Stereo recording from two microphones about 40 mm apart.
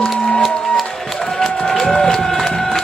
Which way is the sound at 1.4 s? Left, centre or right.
Centre.